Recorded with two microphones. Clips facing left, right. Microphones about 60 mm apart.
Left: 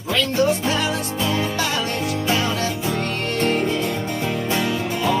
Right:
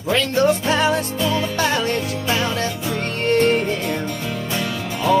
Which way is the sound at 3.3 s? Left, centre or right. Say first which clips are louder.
Right 6 dB; right.